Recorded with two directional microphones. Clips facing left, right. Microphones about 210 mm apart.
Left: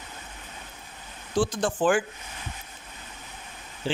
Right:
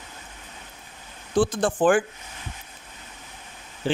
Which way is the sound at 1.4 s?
55° right (ahead or behind).